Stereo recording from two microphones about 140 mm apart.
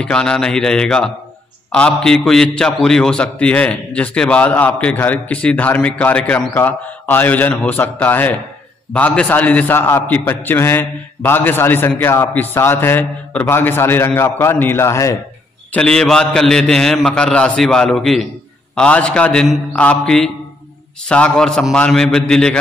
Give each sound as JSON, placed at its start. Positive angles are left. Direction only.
{"t": 0.0, "sound": "a man's voice", "side_deg": 5}
{"t": 15.7, "sound": "a man's voice", "side_deg": 5}